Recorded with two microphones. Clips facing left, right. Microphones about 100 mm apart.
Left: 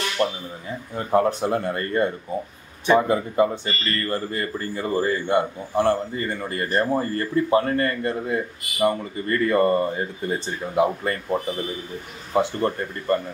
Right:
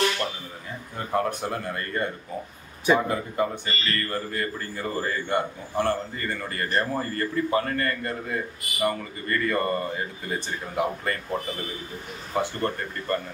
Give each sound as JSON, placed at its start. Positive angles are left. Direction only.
{"t": 0.2, "sound": "a man's voice", "side_deg": 25}
{"t": 12.4, "sound": "a man's voice", "side_deg": 20}